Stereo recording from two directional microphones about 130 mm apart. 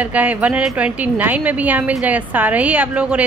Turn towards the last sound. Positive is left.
turn(degrees=-10)  # may be behind; listen again after turning